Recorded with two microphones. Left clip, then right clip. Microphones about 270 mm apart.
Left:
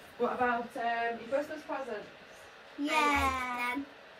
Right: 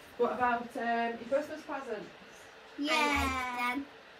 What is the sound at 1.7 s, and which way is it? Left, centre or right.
Speech, right.